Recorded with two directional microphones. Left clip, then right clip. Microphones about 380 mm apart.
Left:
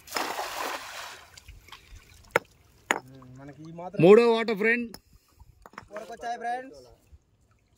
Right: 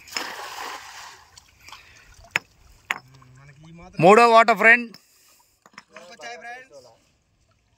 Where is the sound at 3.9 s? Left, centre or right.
Centre.